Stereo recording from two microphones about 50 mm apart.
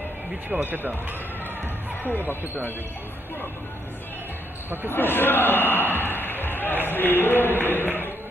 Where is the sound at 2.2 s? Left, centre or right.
Right.